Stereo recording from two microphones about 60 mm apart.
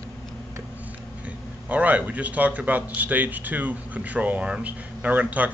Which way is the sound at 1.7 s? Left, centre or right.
Right.